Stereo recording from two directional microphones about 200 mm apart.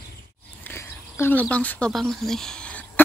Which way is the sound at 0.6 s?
10° left (ahead or behind).